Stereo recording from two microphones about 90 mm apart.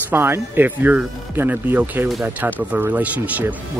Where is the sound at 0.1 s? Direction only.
25° right (ahead or behind).